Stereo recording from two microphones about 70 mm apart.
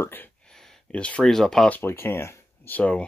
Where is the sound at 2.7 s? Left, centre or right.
Left.